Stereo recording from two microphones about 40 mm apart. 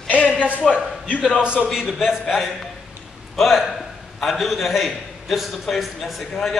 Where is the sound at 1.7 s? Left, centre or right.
Centre.